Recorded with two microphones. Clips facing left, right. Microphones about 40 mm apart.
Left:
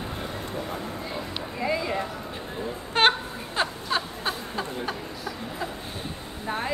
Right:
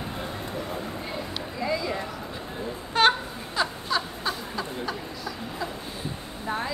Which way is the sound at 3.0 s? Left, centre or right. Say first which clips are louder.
Even; left.